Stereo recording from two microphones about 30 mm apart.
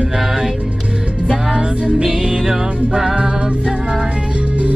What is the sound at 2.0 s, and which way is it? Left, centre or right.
Music, centre.